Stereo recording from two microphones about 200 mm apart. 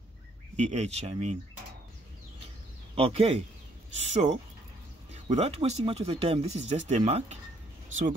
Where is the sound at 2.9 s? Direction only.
30° right (ahead or behind).